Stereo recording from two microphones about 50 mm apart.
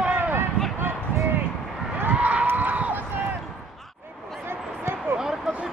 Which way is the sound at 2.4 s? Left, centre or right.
Right.